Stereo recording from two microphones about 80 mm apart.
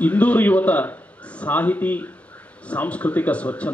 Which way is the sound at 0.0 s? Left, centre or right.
Centre.